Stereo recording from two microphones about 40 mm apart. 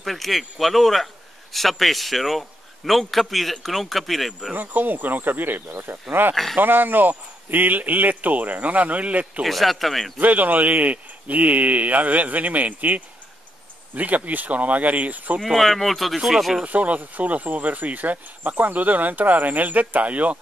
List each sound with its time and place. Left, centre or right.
0.0 s a man's voice: centre
4.6 s speech: right
9.4 s a man's voice: centre
10.1 s speech: right
15.6 s a man's voice: centre
16.6 s speech: right